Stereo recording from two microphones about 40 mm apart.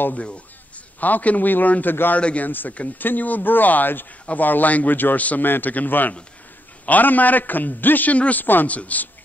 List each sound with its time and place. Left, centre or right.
1.0 s a man's voice: left
2.1 s a man's voice: left
2.4 s a man's voice: left
8.6 s a man's voice: left